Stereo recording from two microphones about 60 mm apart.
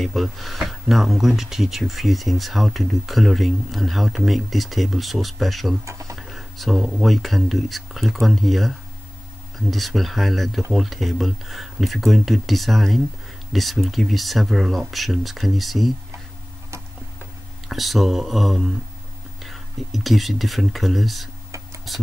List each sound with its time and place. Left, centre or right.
0.0 s speech: centre
5.9 s speech: right
6.1 s speech: centre
17.6 s speech: centre